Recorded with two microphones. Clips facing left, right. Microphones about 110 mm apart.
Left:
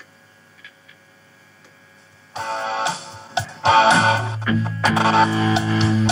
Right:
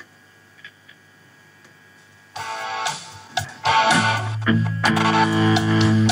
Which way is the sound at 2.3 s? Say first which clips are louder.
Left 4 dB; 25° left (ahead or behind).